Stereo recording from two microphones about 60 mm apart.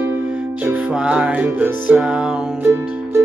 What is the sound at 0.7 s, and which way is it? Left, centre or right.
Music, right.